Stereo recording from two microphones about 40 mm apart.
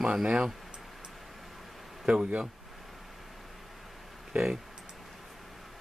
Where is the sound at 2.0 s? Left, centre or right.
Right.